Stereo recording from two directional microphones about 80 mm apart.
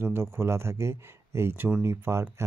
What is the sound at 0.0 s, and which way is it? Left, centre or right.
Speech, right.